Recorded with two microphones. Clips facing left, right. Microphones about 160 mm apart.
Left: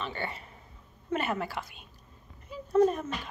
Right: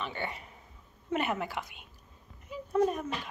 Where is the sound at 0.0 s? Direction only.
15° right (ahead or behind).